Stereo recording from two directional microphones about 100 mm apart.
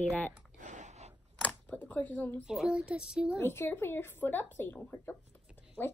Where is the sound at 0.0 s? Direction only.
15° left (ahead or behind).